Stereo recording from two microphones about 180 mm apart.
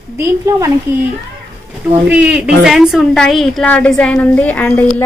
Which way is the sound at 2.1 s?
10° right (ahead or behind).